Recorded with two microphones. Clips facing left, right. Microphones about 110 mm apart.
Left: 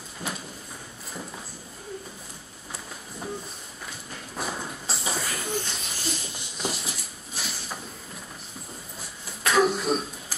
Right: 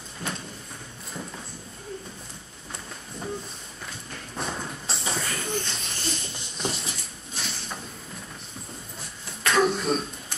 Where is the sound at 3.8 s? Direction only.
5° left (ahead or behind).